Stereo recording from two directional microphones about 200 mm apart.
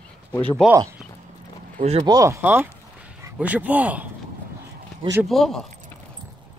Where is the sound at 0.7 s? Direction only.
10° right (ahead or behind).